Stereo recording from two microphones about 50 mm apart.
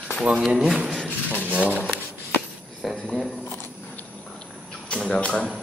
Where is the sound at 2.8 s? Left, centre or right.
Centre.